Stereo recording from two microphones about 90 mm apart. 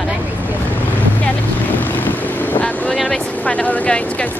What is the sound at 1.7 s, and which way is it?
Boat, 20° left (ahead or behind).